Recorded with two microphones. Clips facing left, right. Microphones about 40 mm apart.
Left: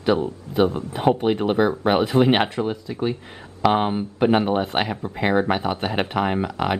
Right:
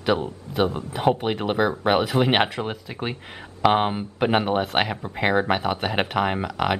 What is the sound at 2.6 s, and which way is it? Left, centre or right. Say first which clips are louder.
Speech: left 5 dB; right.